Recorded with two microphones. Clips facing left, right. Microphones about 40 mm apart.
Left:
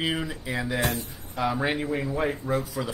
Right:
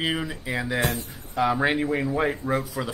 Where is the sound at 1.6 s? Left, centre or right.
Centre.